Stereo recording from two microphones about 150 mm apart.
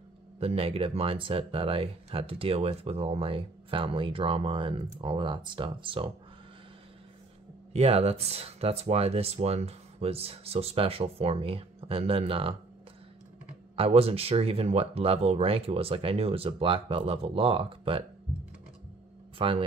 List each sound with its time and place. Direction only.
0.4 s speech: 40° right (ahead or behind)
7.7 s speech: 45° right (ahead or behind)
13.7 s speech: 40° right (ahead or behind)
19.3 s speech: 35° right (ahead or behind)